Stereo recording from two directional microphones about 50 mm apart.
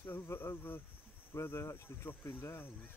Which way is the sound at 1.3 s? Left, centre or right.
Left.